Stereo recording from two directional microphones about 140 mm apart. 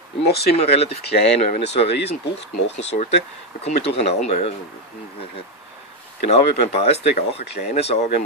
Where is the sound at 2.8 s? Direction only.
50° left (ahead or behind).